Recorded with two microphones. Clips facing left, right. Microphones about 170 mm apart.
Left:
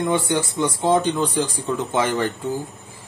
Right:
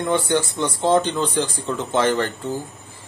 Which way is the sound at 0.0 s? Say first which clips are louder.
Right 1 dB; 10° left (ahead or behind).